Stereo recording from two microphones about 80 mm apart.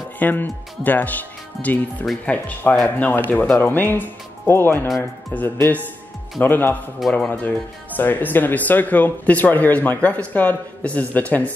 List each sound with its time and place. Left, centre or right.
0.2 s speech: left